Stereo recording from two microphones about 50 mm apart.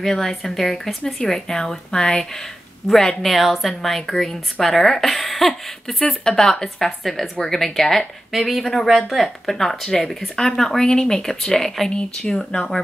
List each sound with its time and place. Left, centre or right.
0.0 s speech: centre
3.2 s a woman's voice: centre
11.9 s speech: centre
12.4 s speech: centre